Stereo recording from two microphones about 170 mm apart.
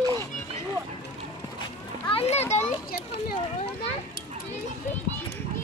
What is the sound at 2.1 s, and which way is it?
Children playing, 35° left (ahead or behind).